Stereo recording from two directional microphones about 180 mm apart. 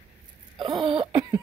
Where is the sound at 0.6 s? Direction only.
25° right (ahead or behind).